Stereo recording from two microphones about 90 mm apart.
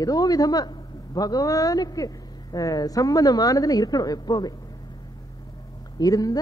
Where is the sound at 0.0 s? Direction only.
45° left (ahead or behind).